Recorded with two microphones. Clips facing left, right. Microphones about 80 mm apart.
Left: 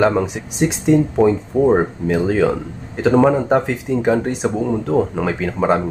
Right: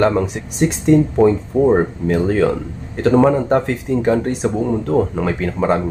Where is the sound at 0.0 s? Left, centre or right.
Centre.